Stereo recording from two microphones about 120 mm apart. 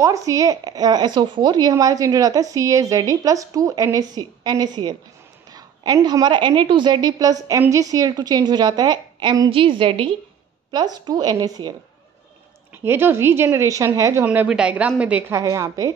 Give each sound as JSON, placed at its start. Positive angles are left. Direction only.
{"t": 0.0, "sound": "a woman's voice", "side_deg": -25}
{"t": 9.5, "sound": "a woman's voice", "side_deg": -45}
{"t": 10.7, "sound": "a woman's voice", "side_deg": -35}
{"t": 12.8, "sound": "a woman's voice", "side_deg": -20}
{"t": 15.3, "sound": "speech", "side_deg": -25}